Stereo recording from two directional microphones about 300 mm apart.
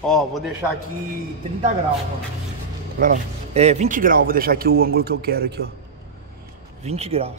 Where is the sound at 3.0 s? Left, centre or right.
Right.